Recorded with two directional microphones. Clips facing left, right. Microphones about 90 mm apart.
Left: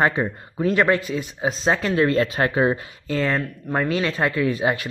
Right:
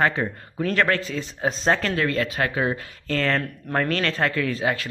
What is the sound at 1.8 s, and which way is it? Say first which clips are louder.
Speech: left 4 dB; 20° left (ahead or behind).